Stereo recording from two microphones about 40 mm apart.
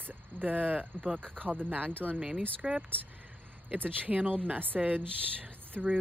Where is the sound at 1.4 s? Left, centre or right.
Left.